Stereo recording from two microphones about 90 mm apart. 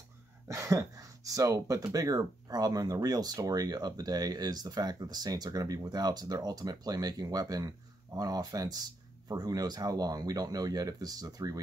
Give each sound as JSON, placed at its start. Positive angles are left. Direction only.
{"t": 0.5, "sound": "speech", "side_deg": -35}